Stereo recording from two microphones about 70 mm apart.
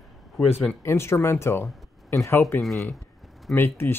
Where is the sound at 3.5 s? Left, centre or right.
Left.